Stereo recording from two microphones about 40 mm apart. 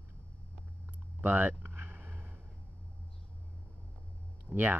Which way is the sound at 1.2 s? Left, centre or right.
Right.